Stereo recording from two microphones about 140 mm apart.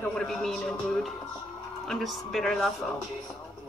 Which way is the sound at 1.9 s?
Centre (ahead or behind).